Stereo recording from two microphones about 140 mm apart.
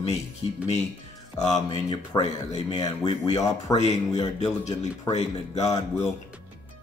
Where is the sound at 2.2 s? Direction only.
50° left (ahead or behind).